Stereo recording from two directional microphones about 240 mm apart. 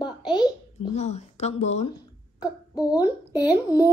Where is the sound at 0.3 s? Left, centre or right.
Centre.